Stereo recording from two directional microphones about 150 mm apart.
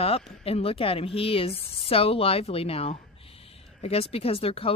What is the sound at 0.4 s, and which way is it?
Speech, 40° left (ahead or behind).